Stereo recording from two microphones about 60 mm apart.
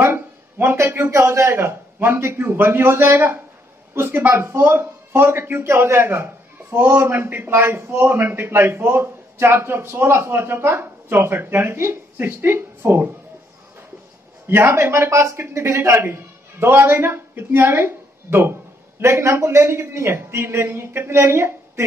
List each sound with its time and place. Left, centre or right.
0.0 s a man's voice: right
14.5 s speech: right